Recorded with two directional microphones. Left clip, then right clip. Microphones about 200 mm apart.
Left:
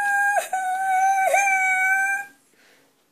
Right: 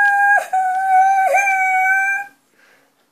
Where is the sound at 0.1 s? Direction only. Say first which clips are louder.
Right 7 dB; 35° left (ahead or behind).